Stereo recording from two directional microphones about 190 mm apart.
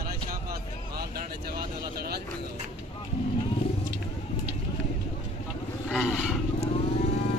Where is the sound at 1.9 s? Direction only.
55° right (ahead or behind).